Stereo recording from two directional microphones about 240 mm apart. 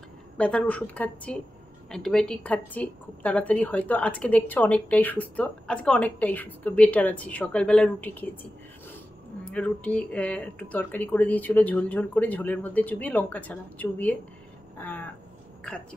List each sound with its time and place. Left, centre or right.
0.4 s a woman's voice: centre
9.4 s speech: centre